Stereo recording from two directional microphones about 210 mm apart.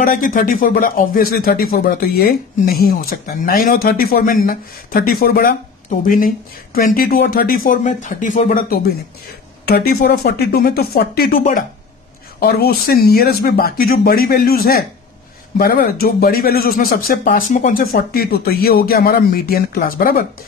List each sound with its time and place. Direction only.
0.0 s speech: 40° left (ahead or behind)